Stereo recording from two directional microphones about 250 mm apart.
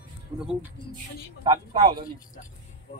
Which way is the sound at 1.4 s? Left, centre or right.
Centre.